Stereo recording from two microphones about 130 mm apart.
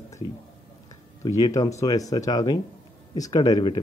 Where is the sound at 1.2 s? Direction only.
25° left (ahead or behind).